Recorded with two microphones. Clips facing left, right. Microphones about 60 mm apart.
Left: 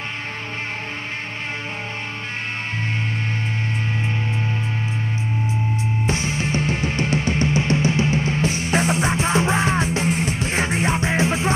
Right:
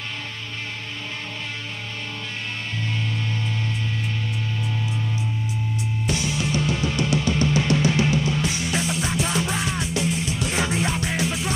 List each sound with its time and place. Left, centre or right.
6.0 s music: left